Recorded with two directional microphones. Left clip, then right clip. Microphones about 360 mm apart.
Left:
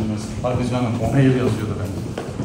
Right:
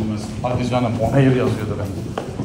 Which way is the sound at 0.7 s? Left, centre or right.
Centre.